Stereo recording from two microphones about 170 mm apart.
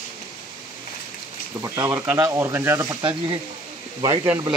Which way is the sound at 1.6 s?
20° right (ahead or behind).